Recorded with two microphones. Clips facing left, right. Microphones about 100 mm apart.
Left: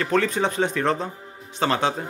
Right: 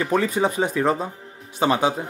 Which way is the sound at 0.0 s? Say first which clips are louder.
Right 1 dB; 10° right (ahead or behind).